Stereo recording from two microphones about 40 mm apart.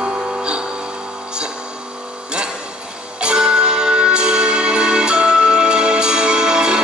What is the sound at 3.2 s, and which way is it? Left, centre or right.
Music, right.